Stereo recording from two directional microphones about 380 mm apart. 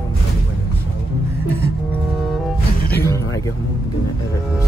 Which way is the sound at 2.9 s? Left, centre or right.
Centre.